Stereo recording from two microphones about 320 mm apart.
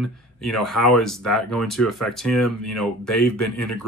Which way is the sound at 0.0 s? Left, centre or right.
Centre.